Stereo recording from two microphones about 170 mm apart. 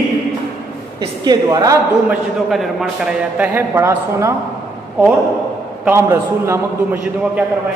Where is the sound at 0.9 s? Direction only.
25° right (ahead or behind).